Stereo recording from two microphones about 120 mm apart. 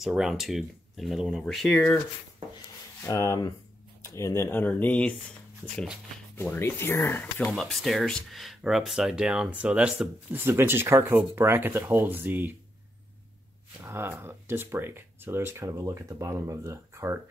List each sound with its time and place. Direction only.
0.0 s speech: 5° right (ahead or behind)
3.0 s speech: 25° left (ahead or behind)
6.4 s speech: 20° left (ahead or behind)
7.5 s speech: centre (ahead or behind); by 12.5 s 15° right (ahead or behind)
13.7 s speech: 20° right (ahead or behind)